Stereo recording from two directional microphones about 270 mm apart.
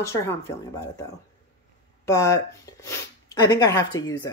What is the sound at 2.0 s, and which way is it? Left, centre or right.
Speech, centre.